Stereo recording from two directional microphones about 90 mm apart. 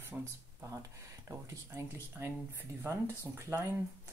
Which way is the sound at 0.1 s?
15° right (ahead or behind).